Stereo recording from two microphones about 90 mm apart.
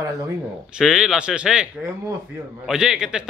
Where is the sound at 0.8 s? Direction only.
5° right (ahead or behind).